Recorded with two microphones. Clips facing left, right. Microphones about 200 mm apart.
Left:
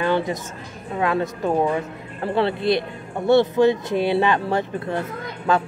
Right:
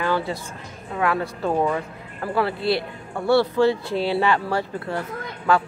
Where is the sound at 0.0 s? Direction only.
20° left (ahead or behind).